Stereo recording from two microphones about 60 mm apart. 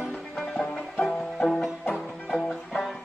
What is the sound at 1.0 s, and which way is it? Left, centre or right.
Music, centre.